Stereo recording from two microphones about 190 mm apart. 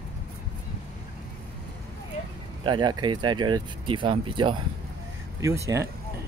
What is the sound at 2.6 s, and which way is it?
Speech, 25° right (ahead or behind).